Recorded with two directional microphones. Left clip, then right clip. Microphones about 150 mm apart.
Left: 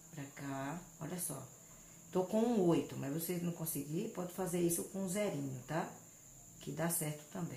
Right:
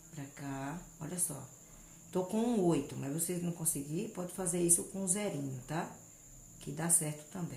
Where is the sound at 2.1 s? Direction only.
Centre (ahead or behind).